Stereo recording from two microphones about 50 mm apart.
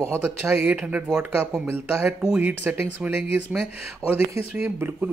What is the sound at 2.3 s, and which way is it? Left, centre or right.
Speech, right.